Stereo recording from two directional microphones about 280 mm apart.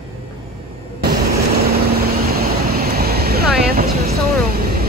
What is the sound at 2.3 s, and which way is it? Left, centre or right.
Vehicle, right.